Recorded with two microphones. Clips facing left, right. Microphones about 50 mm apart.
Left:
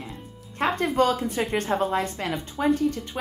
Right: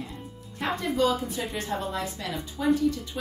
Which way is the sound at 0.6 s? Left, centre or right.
Left.